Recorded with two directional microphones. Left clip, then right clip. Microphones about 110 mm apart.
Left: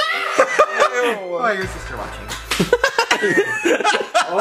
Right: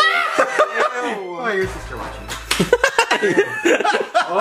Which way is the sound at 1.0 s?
40° left (ahead or behind).